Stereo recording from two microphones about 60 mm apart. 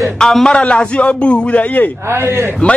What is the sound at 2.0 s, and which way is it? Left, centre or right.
Speech, right.